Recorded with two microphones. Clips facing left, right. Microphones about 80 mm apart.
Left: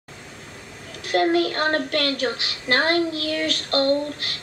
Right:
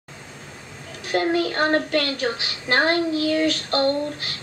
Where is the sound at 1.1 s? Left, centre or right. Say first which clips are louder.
Left 2 dB; right.